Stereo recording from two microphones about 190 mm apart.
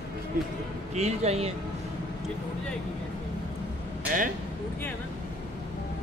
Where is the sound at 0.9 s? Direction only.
35° right (ahead or behind).